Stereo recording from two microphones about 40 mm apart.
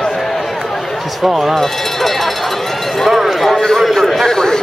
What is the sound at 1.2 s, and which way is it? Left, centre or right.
Speech, centre.